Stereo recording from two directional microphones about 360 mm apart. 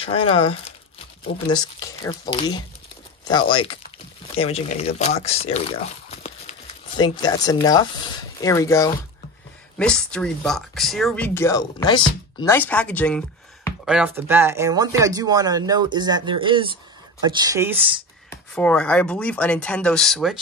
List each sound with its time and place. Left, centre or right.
0.0 s speech: centre
18.3 s speech: centre